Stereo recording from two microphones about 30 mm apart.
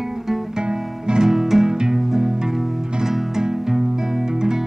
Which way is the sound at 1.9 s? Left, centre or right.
Centre.